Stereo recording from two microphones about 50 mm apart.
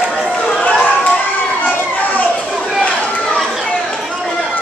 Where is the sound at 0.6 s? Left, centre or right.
Left.